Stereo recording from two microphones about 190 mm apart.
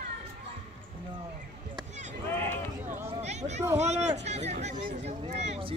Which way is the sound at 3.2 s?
35° right (ahead or behind).